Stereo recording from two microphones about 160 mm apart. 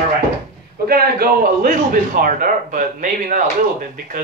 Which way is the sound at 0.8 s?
70° right (ahead or behind).